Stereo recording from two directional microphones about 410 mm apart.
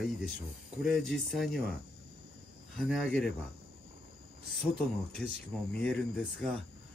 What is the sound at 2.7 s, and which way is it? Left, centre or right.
Speech, centre.